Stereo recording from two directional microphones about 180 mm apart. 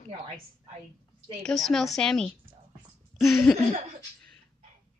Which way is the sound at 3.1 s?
Centre (ahead or behind).